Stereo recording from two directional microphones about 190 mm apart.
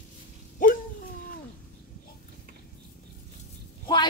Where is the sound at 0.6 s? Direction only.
45° left (ahead or behind).